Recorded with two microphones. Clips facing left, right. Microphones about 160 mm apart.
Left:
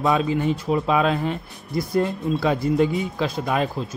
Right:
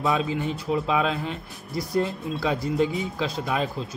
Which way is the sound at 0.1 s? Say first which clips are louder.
Left 4 dB; 50° left (ahead or behind).